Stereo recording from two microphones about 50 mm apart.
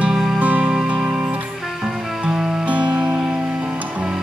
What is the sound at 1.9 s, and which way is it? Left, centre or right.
Music, centre.